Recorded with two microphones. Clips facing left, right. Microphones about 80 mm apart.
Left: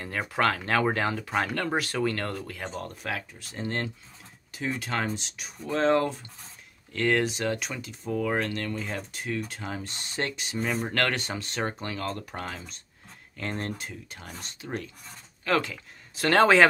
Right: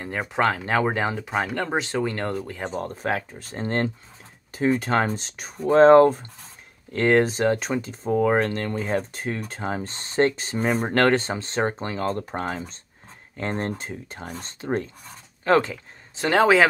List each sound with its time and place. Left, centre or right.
0.0 s speech: right
15.4 s a sound: right
16.3 s speech: centre